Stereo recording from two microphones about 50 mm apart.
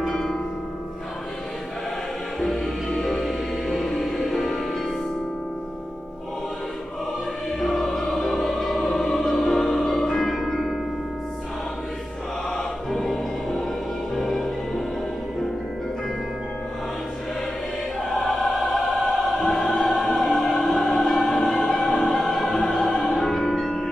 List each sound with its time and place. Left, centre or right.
0.1 s music: centre
2.4 s music: centre
7.6 s music: centre
12.4 s music: centre
18.1 s opera: centre